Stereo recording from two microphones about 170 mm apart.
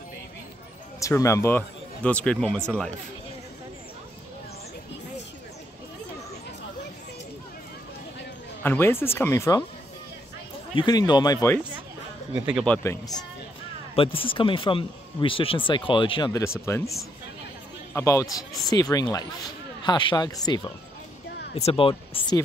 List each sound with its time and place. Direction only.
0.9 s speech: 20° left (ahead or behind)
8.6 s speech: 15° left (ahead or behind)
10.7 s speech: 25° left (ahead or behind)
12.6 s speech: 10° left (ahead or behind)
13.9 s speech: 30° left (ahead or behind)
21.5 s speech: 35° left (ahead or behind)